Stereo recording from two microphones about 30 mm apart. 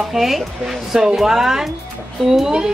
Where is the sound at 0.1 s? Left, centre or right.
Centre.